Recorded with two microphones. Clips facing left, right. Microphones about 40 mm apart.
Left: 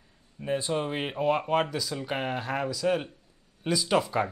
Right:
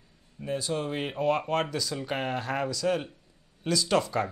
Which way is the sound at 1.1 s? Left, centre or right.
Centre.